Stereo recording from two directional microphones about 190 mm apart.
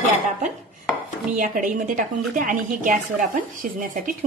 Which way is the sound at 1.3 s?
45° right (ahead or behind).